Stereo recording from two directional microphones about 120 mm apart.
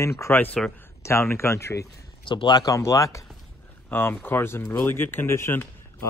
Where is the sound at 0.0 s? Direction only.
20° left (ahead or behind).